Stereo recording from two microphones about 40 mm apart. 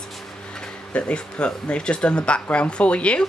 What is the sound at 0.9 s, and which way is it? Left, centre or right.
Speech, left.